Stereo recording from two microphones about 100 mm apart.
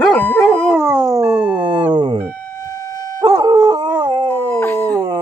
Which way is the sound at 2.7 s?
35° left (ahead or behind).